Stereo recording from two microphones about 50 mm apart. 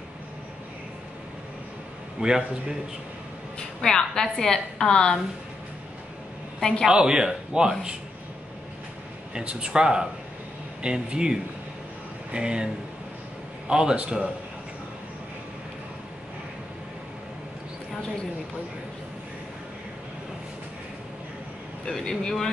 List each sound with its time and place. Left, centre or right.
2.1 s a man's voice: centre
3.5 s a woman's voice: centre
6.9 s speech: centre
9.3 s speech: right
22.0 s a woman's voice: centre